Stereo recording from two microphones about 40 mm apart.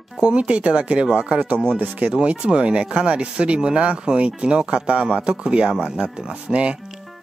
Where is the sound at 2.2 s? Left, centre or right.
Right.